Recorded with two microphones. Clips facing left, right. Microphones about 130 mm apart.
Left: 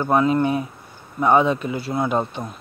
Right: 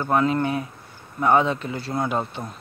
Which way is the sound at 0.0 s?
15° left (ahead or behind).